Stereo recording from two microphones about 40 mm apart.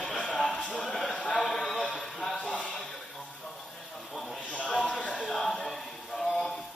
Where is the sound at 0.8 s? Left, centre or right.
Centre.